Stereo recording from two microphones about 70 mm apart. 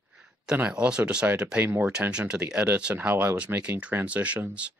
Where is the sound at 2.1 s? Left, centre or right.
Centre.